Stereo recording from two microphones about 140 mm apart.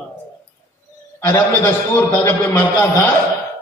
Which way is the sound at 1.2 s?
15° left (ahead or behind).